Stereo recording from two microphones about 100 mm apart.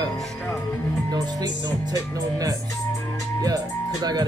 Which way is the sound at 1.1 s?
35° right (ahead or behind).